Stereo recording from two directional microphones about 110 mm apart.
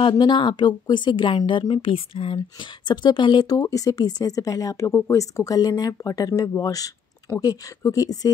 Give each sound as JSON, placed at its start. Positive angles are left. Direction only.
{"t": 0.0, "sound": "speech", "side_deg": 50}
{"t": 2.9, "sound": "speech", "side_deg": 40}